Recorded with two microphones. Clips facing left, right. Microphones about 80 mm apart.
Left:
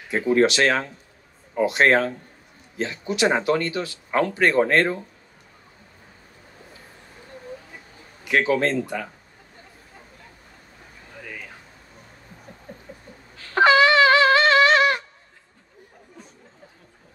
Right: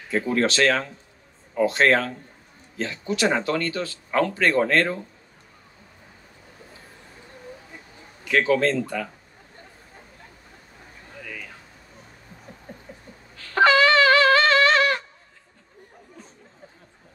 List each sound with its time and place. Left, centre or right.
0.1 s speech: centre
8.3 s speech: left
12.7 s rodents: right
13.6 s shofar: centre